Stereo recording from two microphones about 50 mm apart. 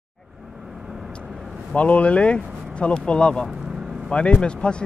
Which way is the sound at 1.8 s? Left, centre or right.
Left.